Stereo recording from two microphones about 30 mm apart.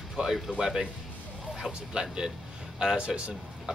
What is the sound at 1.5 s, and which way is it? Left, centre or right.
Speech, right.